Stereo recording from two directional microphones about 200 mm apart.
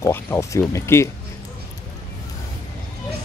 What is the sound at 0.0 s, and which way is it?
Speech, 15° left (ahead or behind).